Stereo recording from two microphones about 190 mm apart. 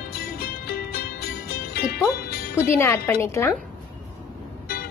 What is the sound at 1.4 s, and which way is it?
Music, 55° left (ahead or behind).